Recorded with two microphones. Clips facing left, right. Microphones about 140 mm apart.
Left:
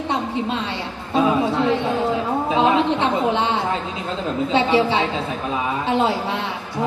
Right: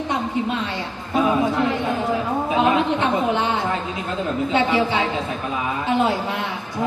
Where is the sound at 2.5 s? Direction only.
25° left (ahead or behind).